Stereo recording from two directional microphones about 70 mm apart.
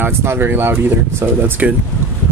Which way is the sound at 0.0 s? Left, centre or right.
Right.